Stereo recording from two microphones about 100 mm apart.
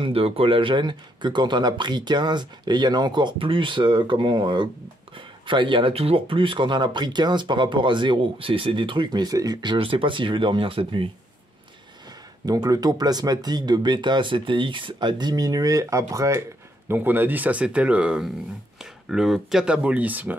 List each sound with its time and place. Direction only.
0.0 s speech: 70° right (ahead or behind)
12.4 s speech: 40° right (ahead or behind); by 20.3 s 15° right (ahead or behind)